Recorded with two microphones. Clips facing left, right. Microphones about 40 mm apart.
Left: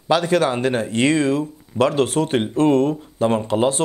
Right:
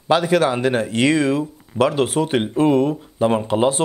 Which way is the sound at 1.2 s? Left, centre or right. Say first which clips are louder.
Even; centre.